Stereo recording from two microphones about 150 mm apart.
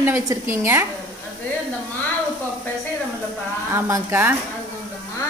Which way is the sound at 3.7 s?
15° right (ahead or behind).